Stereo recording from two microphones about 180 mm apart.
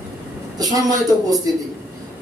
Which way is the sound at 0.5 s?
20° right (ahead or behind).